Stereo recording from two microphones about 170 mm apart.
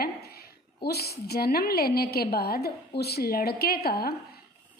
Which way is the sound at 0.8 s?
70° left (ahead or behind).